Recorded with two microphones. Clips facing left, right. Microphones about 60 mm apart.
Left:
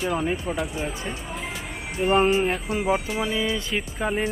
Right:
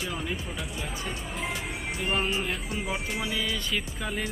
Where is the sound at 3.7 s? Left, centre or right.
Left.